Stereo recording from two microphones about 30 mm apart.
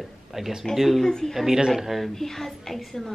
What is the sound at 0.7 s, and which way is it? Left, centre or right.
Speech, centre.